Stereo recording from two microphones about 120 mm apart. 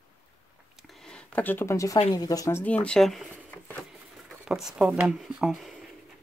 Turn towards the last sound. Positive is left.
turn(degrees=-5)  # may be behind; listen again after turning